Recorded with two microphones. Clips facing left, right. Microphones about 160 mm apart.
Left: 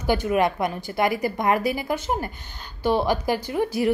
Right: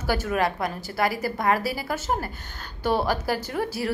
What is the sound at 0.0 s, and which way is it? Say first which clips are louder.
A woman's voice: left 3 dB; 15° left (ahead or behind).